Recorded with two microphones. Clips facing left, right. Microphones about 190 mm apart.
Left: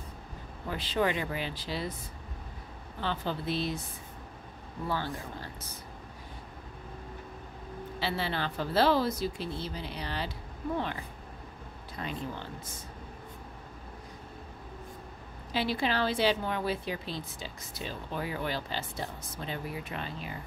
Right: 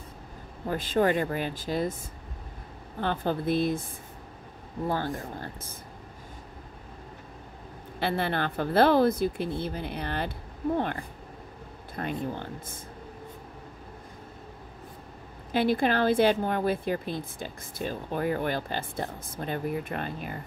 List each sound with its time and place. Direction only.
0.7 s a woman's voice: 45° right (ahead or behind)
3.0 s a woman's voice: 50° right (ahead or behind)
4.8 s a woman's voice: 50° right (ahead or behind)
8.0 s a woman's voice: 55° right (ahead or behind)
15.5 s a woman's voice: 50° right (ahead or behind)